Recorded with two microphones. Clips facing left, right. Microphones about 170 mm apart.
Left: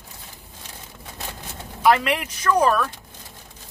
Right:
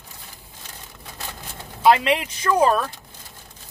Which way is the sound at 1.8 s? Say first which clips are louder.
Right 2 dB; 25° right (ahead or behind).